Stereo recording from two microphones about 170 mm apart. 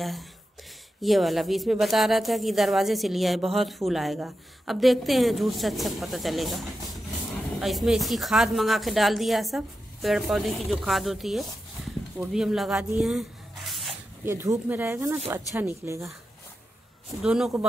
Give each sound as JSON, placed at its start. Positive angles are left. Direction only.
{"t": 0.0, "sound": "a woman's voice", "side_deg": 0}
{"t": 14.2, "sound": "speech", "side_deg": -15}
{"t": 17.2, "sound": "a woman's voice", "side_deg": -5}